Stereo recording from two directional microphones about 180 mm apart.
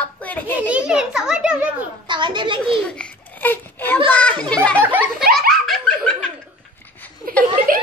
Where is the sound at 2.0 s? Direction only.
25° right (ahead or behind).